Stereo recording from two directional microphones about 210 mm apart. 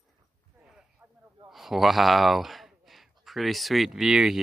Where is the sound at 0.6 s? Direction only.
5° right (ahead or behind).